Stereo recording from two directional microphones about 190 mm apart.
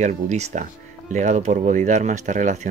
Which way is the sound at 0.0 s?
35° right (ahead or behind).